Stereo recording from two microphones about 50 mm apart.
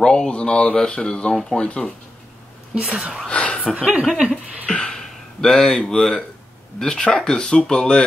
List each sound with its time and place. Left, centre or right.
0.0 s speech: centre
2.7 s speech: right
3.3 s a sound: left
3.7 s speech: right
4.6 s a sound: centre
6.8 s speech: centre